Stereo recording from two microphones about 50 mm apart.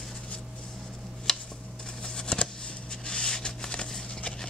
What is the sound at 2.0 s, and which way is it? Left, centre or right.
Shuffling cards, centre.